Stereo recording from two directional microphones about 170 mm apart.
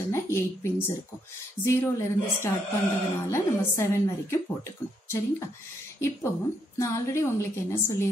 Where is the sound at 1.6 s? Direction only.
15° left (ahead or behind).